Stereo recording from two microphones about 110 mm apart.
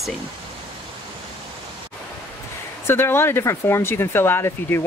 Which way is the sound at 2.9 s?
20° left (ahead or behind).